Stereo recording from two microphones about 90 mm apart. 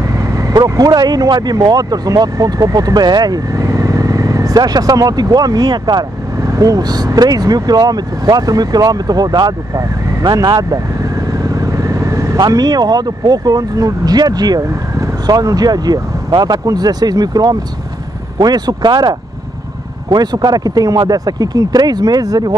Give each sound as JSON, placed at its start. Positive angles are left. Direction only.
{"t": 0.0, "sound": "vehicle", "side_deg": -35}
{"t": 0.7, "sound": "speech", "side_deg": -45}